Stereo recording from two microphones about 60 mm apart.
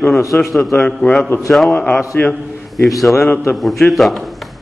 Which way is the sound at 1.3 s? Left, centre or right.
Left.